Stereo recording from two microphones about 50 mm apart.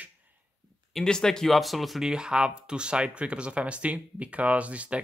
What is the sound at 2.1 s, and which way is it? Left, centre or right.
Speech, centre.